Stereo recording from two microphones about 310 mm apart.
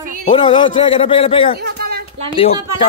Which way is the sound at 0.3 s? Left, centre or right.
Centre.